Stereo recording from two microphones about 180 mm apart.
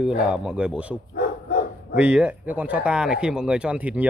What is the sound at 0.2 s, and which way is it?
A man's voice, 5° right (ahead or behind).